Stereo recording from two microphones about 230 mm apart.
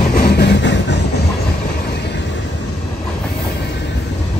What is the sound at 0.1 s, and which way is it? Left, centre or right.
Music, left.